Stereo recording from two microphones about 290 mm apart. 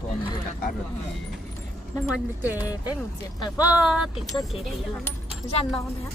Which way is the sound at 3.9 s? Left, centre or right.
Centre.